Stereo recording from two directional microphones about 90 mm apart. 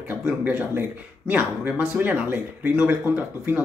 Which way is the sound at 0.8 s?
20° right (ahead or behind).